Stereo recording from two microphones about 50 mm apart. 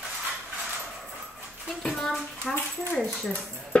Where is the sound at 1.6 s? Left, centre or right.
Centre.